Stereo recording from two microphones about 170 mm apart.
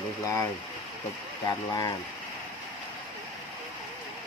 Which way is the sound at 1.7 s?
20° left (ahead or behind).